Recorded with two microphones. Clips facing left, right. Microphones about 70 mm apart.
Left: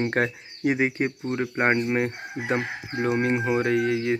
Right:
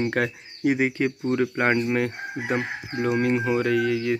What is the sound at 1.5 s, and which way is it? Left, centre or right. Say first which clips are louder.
Speech: even; left.